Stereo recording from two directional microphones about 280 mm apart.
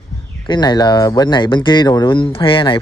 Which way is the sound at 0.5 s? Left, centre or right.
Centre.